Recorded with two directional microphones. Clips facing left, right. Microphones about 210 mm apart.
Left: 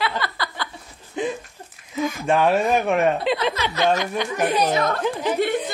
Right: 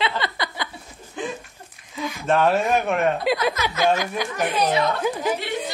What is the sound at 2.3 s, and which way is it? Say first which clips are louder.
Speech: even; centre (ahead or behind).